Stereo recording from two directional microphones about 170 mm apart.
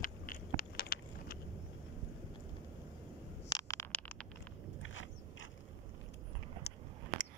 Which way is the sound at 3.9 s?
5° left (ahead or behind).